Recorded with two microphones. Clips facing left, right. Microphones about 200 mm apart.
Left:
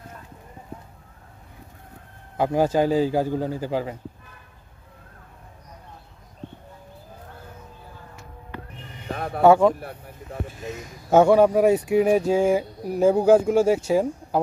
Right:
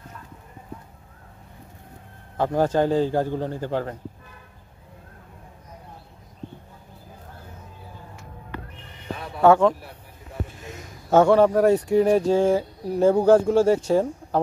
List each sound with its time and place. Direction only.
2.3 s speech: 10° left (ahead or behind)
9.1 s music: 55° left (ahead or behind)
9.4 s speech: 10° left (ahead or behind)
11.1 s speech: 10° left (ahead or behind)